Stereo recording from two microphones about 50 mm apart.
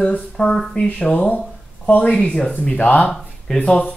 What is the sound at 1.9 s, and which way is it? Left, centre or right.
Speech, left.